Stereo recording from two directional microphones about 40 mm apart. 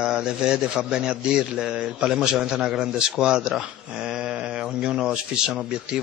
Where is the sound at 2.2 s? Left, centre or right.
Centre.